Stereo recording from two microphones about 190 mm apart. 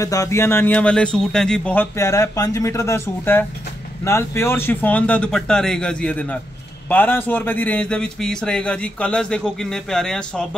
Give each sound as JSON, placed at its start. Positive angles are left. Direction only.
{"t": 0.0, "sound": "a man's voice", "side_deg": 15}